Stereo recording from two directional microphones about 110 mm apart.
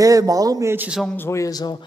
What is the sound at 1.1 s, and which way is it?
Speech, 25° left (ahead or behind).